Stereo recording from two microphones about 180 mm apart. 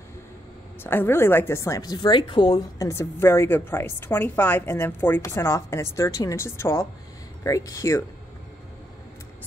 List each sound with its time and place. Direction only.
0.8 s speech: 10° left (ahead or behind)